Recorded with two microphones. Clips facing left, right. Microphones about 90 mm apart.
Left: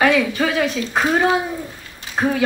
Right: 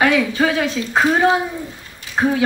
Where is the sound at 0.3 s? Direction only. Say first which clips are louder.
Right 1 dB; 30° right (ahead or behind).